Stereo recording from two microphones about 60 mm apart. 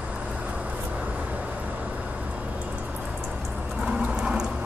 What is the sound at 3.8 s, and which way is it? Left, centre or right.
Ratchet, centre.